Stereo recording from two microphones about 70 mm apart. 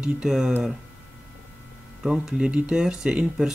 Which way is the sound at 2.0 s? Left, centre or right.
Centre.